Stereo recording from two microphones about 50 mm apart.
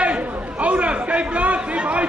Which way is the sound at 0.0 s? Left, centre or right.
Right.